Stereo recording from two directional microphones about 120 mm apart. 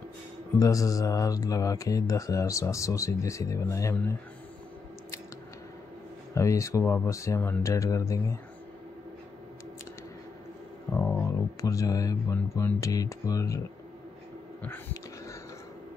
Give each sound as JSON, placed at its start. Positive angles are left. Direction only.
{"t": 0.6, "sound": "speech", "side_deg": 30}
{"t": 6.3, "sound": "speech", "side_deg": 25}
{"t": 10.9, "sound": "a sound", "side_deg": 10}
{"t": 11.2, "sound": "speech", "side_deg": 25}